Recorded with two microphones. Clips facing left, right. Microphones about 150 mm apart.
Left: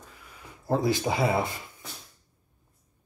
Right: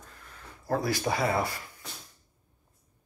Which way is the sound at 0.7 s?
20° left (ahead or behind).